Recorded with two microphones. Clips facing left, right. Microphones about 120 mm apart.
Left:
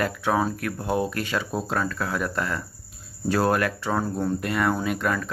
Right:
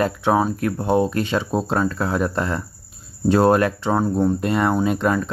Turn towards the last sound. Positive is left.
turn(degrees=-25)  # may be behind; listen again after turning